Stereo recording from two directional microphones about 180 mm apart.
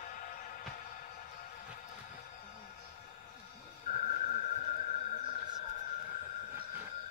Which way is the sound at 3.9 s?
45° left (ahead or behind).